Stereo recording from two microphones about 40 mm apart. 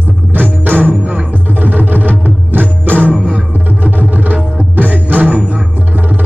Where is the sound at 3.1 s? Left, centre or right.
Centre.